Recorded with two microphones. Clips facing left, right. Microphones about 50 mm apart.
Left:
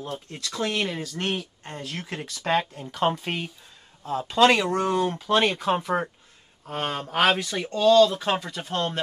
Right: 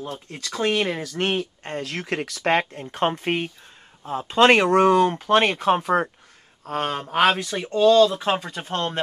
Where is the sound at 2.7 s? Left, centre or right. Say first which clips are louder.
Right 1 dB; right.